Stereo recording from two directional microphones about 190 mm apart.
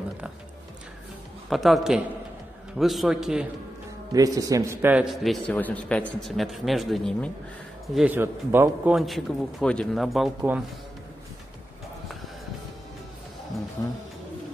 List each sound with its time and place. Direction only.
1.5 s a man's voice: centre (ahead or behind)
4.1 s a man's voice: 20° right (ahead or behind)